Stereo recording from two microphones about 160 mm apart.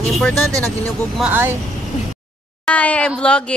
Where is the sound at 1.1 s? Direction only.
10° right (ahead or behind).